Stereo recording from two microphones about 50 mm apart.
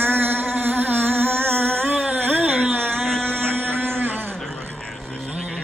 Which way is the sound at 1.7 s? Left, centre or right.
Right.